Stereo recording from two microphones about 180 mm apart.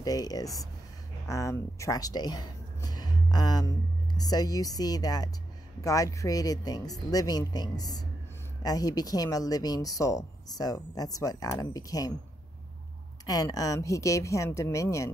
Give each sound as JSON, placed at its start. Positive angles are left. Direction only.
{"t": 0.0, "sound": "a woman's voice", "side_deg": 20}
{"t": 13.2, "sound": "speech", "side_deg": 20}